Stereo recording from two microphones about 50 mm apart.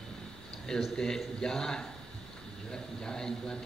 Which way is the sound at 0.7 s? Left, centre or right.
Centre.